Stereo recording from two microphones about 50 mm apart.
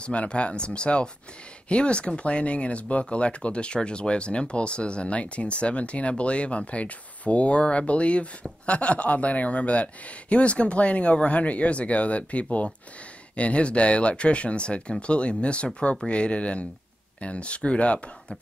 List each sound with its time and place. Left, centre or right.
0.0 s speech: left